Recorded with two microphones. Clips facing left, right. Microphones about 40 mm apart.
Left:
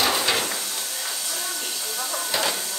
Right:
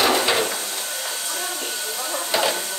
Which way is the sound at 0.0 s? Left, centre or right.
Centre.